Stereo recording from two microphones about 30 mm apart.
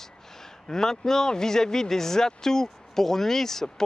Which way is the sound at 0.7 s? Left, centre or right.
Centre.